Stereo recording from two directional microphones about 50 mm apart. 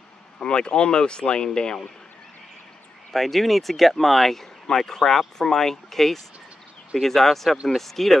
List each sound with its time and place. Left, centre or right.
0.4 s speech: centre
3.1 s speech: centre